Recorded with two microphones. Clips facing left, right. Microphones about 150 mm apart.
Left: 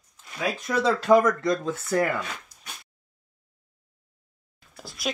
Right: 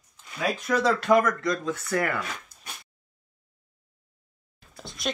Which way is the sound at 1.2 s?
25° left (ahead or behind).